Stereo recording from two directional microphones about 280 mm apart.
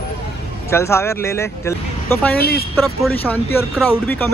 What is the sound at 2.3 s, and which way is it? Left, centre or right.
Speech, left.